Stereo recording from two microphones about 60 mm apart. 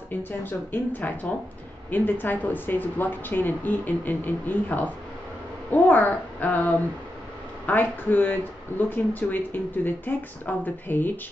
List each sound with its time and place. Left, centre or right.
0.1 s speech: left